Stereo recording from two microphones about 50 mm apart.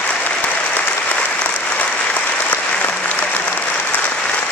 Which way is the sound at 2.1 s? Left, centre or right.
Left.